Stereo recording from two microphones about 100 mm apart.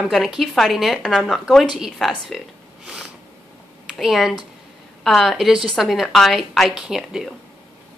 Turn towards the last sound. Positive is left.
turn(degrees=-5)  # may be behind; listen again after turning